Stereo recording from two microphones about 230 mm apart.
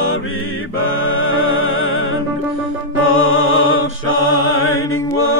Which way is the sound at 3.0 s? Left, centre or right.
Left.